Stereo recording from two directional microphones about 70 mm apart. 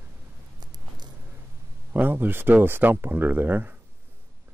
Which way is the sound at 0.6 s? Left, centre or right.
Right.